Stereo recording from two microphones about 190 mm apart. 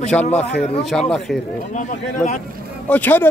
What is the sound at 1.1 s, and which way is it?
Speech, centre (ahead or behind).